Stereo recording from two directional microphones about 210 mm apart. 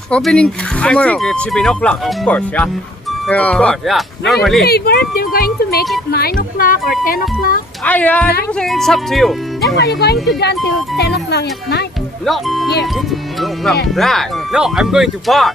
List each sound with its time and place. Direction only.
0.1 s speech: 5° left (ahead or behind)
4.6 s speech: 50° left (ahead or behind)
7.8 s speech: 5° left (ahead or behind)
9.8 s speech: 50° left (ahead or behind)
12.3 s speech: centre (ahead or behind)
13.9 s speech: centre (ahead or behind)